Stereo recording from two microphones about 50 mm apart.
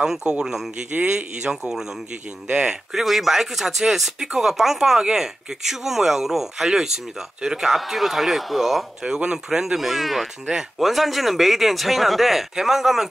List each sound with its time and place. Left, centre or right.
0.0 s speech: centre